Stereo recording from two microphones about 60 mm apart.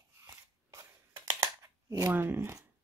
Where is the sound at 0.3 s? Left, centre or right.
Right.